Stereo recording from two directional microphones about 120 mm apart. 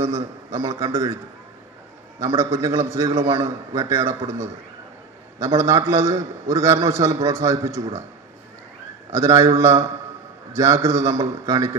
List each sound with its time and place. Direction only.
0.0 s a man's voice: 65° right (ahead or behind)
0.5 s a man's voice: 25° right (ahead or behind)
2.3 s a man's voice: 25° right (ahead or behind)
5.9 s a man's voice: 25° right (ahead or behind)
9.1 s a man's voice: 25° right (ahead or behind)